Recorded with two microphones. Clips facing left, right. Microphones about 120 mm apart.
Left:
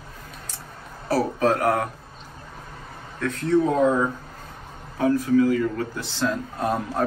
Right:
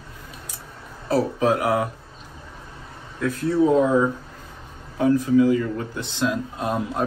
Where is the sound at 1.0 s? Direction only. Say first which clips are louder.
Right 1 dB; 20° right (ahead or behind).